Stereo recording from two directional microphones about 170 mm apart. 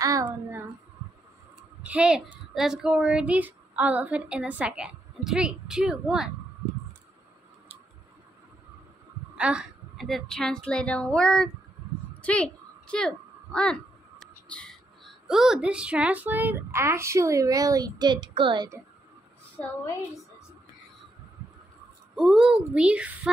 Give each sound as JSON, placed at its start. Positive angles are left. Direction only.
{"t": 0.0, "sound": "child singing", "side_deg": -20}
{"t": 1.8, "sound": "speech", "side_deg": -5}
{"t": 9.3, "sound": "speech", "side_deg": -5}
{"t": 12.2, "sound": "a sound", "side_deg": 5}
{"t": 14.2, "sound": "speech", "side_deg": 5}
{"t": 22.1, "sound": "speech", "side_deg": 0}